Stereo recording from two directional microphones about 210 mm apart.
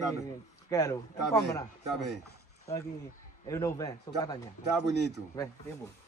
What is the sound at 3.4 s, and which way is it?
Speech, 15° left (ahead or behind).